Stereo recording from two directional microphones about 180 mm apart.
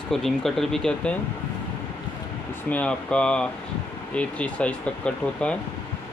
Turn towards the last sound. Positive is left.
turn(degrees=5)  # may be behind; listen again after turning